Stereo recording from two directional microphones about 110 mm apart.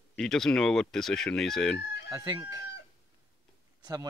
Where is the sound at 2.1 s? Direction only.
35° right (ahead or behind).